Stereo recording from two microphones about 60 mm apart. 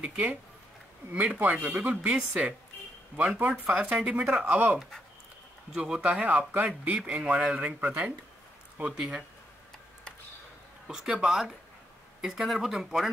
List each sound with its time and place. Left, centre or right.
0.0 s speech: right
1.4 s speech: right
2.0 s speech: centre
3.2 s speech: right
4.5 s speech: right
5.7 s speech: centre
6.1 s speech: right
10.9 s speech: centre